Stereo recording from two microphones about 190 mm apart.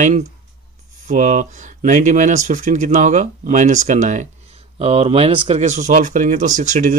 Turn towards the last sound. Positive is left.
turn(degrees=-40)  # may be behind; listen again after turning